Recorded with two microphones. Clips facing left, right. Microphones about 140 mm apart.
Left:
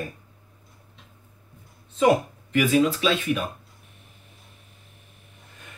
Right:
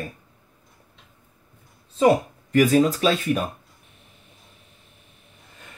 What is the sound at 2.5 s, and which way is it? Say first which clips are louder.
Speech: right 3 dB; 40° right (ahead or behind).